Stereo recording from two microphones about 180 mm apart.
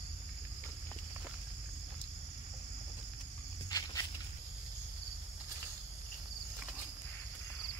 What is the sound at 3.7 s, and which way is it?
Walk, 20° left (ahead or behind).